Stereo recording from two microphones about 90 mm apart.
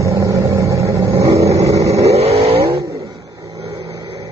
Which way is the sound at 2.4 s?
90° right.